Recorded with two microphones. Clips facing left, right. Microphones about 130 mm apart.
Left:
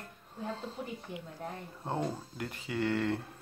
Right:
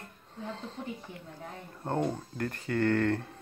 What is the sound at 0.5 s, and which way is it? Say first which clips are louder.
Speech: right 1 dB; 10° left (ahead or behind).